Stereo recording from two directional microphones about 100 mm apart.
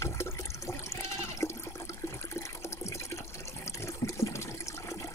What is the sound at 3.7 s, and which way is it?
Water, 30° left (ahead or behind).